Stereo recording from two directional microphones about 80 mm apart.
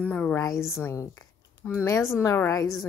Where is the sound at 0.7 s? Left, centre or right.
Left.